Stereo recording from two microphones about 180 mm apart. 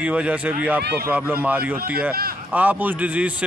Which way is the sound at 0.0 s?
10° right (ahead or behind).